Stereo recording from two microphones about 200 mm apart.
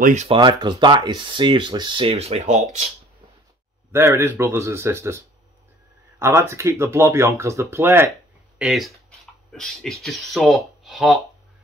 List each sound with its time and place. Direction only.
0.0 s speech: 35° right (ahead or behind)
0.4 s speech: 20° right (ahead or behind)
3.9 s speech: 15° right (ahead or behind)
8.5 s speech: centre (ahead or behind)